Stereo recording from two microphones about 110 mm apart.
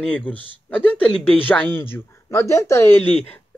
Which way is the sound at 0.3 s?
15° left (ahead or behind).